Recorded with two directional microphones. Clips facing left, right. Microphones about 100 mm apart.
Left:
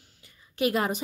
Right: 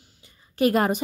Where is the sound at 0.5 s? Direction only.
45° right (ahead or behind).